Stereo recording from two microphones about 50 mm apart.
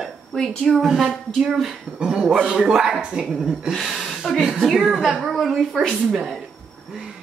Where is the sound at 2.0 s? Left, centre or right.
Centre.